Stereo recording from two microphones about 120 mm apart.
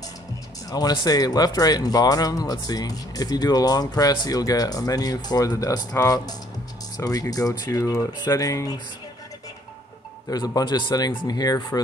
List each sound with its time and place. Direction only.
0.7 s speech: 35° left (ahead or behind)
10.3 s speech: 35° left (ahead or behind)